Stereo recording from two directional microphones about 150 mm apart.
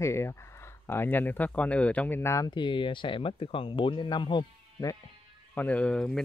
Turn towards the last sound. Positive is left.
turn(degrees=5)  # may be behind; listen again after turning